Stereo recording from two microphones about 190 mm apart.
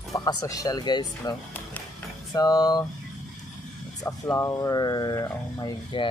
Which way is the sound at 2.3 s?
20° left (ahead or behind).